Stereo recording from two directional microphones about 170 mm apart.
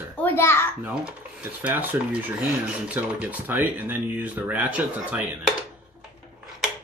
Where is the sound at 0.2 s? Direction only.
15° left (ahead or behind).